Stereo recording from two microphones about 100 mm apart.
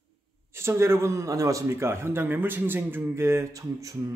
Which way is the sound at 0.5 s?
25° right (ahead or behind).